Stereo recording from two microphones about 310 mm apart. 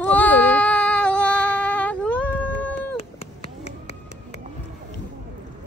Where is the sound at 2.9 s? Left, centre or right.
Centre.